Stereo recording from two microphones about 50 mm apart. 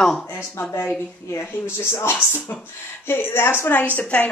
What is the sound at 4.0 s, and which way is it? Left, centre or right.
Speech, left.